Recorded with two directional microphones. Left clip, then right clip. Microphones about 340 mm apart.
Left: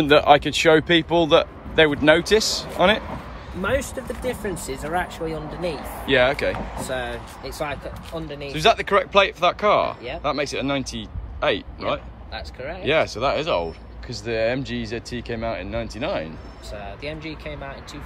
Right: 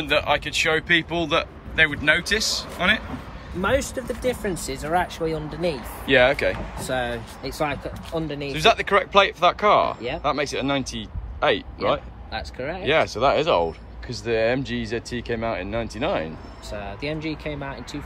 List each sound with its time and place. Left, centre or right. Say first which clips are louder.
0.0 s speech: left 7 dB; centre
3.6 s speech: right 1 dB; centre
6.0 s speech: right 1 dB; centre
6.9 s speech: right 4 dB; centre
8.5 s speech: left 1 dB; centre
12.3 s speech: right 3 dB; right
12.8 s speech: right 1 dB; centre
16.7 s speech: right 3 dB; right